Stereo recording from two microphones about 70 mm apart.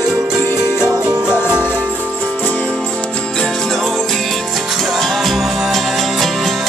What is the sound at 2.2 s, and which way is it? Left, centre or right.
Music, left.